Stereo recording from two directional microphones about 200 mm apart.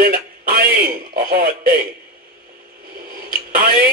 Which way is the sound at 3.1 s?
45° right (ahead or behind).